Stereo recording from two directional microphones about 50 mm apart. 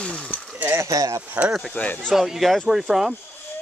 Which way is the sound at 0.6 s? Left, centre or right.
Right.